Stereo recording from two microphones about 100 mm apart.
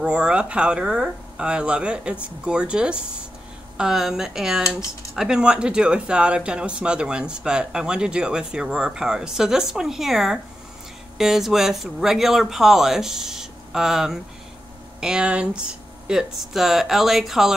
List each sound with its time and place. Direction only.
0.0 s speech: 10° right (ahead or behind)